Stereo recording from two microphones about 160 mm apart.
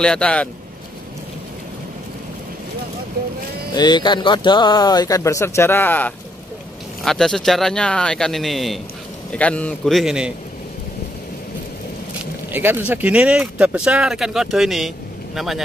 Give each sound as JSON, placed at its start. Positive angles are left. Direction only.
{"t": 0.0, "sound": "a man's voice", "side_deg": 5}
{"t": 3.7, "sound": "speech", "side_deg": 30}
{"t": 12.5, "sound": "speech", "side_deg": -10}